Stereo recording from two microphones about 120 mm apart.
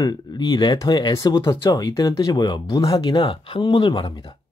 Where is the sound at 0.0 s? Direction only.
35° left (ahead or behind).